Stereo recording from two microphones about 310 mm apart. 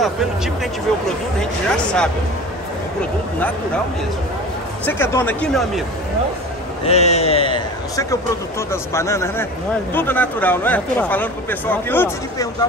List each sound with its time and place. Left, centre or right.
1.4 s speech: centre
4.8 s speech: centre
6.8 s a man's voice: centre